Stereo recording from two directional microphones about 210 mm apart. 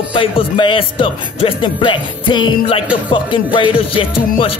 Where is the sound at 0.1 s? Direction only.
25° left (ahead or behind).